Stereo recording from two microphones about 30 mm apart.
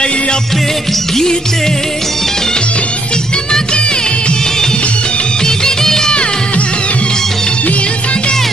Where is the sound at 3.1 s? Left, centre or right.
Left.